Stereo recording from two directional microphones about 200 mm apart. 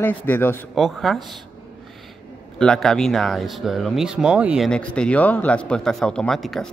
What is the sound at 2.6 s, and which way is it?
Speech, centre (ahead or behind).